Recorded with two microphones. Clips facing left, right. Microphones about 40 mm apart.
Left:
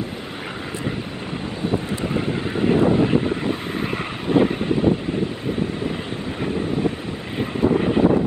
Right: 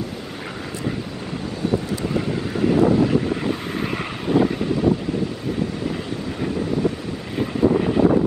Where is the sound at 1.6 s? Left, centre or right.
Left.